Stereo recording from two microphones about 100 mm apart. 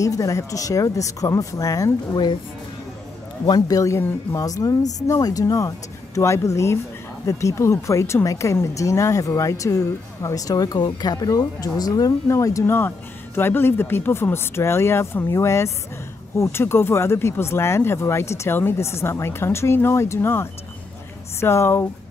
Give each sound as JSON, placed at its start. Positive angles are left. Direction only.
{"t": 0.0, "sound": "speech", "side_deg": 35}
{"t": 3.4, "sound": "speech", "side_deg": 40}